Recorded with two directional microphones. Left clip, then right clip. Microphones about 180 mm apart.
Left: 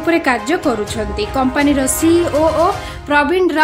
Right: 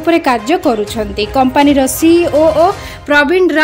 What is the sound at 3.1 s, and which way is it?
Music, 20° right (ahead or behind).